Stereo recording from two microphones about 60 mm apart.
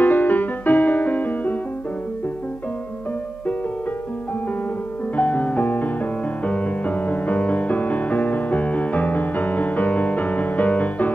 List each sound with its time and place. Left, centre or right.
0.0 s music: left
5.1 s music: left